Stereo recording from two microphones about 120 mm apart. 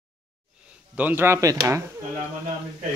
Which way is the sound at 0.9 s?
15° right (ahead or behind).